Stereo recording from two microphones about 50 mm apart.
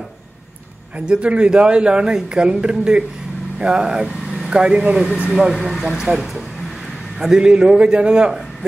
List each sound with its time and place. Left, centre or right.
1.0 s a man's voice: centre